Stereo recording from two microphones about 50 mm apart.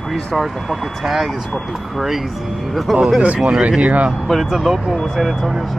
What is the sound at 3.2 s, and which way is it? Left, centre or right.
Speech, right.